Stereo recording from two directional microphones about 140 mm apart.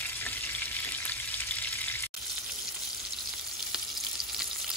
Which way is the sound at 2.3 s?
5° right (ahead or behind).